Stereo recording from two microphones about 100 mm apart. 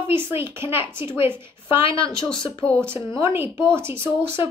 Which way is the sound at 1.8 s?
60° left (ahead or behind).